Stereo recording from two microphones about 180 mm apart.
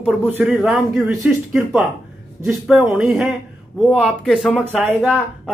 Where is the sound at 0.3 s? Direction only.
10° right (ahead or behind).